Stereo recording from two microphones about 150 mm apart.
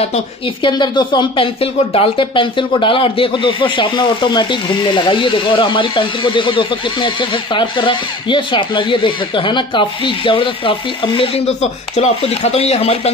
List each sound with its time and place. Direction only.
0.7 s speech: 30° left (ahead or behind)